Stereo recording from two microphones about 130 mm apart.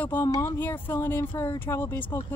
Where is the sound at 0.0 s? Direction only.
15° left (ahead or behind).